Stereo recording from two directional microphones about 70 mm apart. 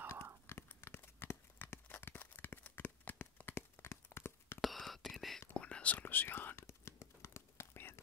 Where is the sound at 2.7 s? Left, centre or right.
Left.